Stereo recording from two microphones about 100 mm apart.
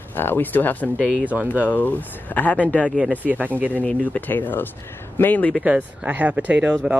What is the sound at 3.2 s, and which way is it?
Speech, 15° right (ahead or behind).